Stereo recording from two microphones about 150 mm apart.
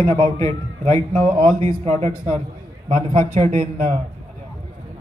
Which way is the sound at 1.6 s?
45° right (ahead or behind).